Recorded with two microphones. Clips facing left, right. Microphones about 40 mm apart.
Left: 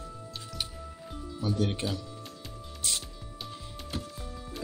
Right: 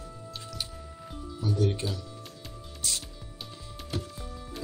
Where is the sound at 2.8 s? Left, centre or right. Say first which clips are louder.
Even; left.